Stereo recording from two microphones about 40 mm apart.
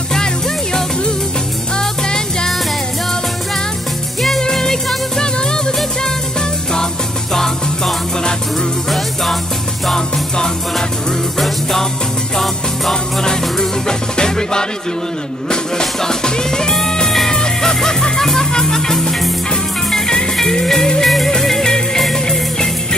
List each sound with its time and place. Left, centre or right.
1.8 s music: centre
4.4 s music: centre
7.3 s music: centre
12.9 s music: centre